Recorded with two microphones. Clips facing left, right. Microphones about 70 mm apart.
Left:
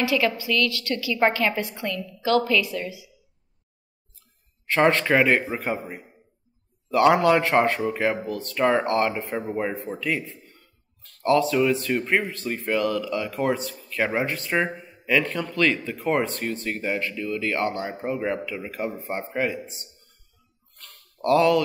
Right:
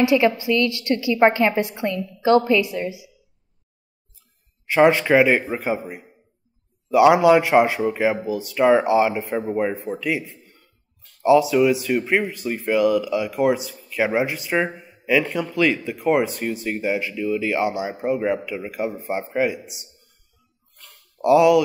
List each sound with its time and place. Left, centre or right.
0.0 s a woman's voice: right
4.6 s a man's voice: centre
20.7 s a sound: centre